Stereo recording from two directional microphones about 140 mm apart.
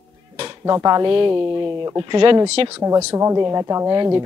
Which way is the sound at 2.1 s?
35° right (ahead or behind).